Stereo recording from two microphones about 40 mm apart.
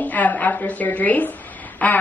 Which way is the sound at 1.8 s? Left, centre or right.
Left.